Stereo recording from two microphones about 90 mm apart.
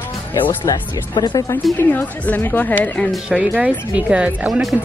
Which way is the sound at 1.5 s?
25° left (ahead or behind).